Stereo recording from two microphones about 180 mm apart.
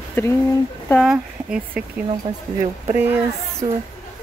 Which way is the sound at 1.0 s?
5° right (ahead or behind).